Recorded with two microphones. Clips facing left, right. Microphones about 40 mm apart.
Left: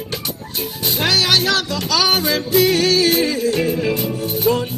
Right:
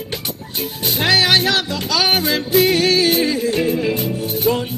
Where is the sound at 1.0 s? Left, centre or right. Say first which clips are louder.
Right 2 dB; right.